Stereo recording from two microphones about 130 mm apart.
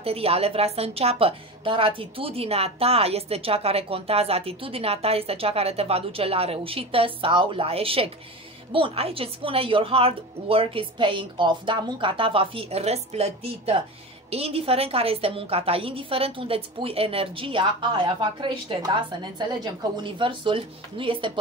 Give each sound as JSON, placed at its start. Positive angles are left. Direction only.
{"t": 0.0, "sound": "a woman's voice", "side_deg": -50}